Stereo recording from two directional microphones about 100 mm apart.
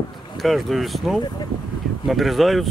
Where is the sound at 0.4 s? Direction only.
Centre (ahead or behind).